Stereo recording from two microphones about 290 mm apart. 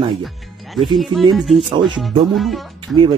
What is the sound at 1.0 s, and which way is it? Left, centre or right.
Speech, centre.